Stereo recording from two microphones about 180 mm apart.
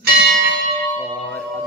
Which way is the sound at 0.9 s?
10° left (ahead or behind).